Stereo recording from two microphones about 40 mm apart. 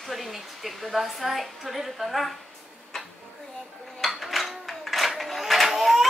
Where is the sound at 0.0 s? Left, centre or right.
Centre.